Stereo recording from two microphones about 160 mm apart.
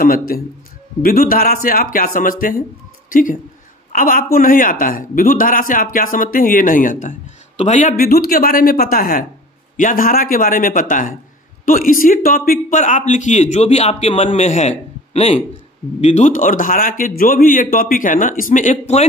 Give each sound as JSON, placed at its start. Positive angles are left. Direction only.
{"t": 0.0, "sound": "a man's voice", "side_deg": 65}
{"t": 7.9, "sound": "a man's voice", "side_deg": 70}